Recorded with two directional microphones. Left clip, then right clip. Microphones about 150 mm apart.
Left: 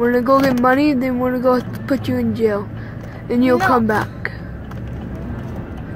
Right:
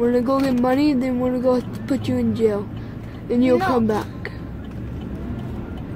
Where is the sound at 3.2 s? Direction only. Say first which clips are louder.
Left 3 dB; 10° right (ahead or behind).